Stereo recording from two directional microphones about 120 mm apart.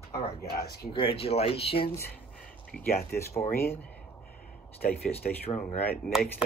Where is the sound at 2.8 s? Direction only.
20° left (ahead or behind).